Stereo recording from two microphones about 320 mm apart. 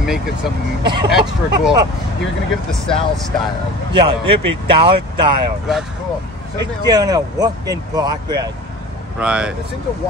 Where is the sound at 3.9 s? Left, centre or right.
Centre.